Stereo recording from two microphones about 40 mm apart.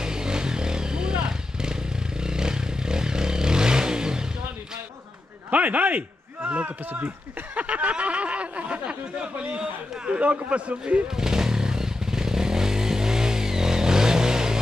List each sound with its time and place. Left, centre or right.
0.0 s motorcycle: centre
5.5 s a man's voice: right
7.5 s speech: right
11.1 s motorcycle: centre